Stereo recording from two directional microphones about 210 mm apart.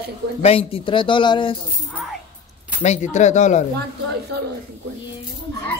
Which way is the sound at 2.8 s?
35° left (ahead or behind).